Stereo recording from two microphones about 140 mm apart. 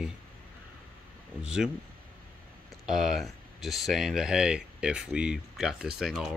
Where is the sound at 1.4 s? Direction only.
5° right (ahead or behind).